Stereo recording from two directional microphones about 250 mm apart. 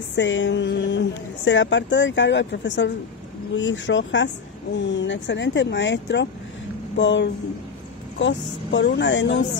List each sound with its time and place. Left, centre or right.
0.1 s a woman's voice: left